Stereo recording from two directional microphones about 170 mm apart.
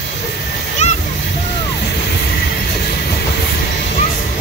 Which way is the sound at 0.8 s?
45° left (ahead or behind).